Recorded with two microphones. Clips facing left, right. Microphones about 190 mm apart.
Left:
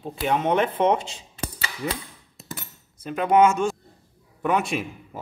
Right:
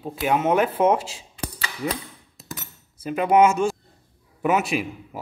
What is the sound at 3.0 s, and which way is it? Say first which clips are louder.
Speech: right 1 dB; 5° right (ahead or behind).